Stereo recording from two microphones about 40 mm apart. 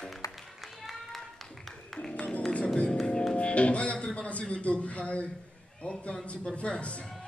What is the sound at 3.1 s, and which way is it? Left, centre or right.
Music, centre.